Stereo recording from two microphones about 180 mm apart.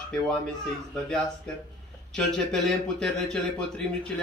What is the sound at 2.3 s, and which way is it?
Speech, 5° left (ahead or behind).